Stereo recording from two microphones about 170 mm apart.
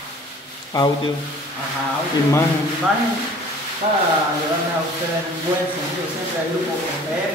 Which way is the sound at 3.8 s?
40° right (ahead or behind).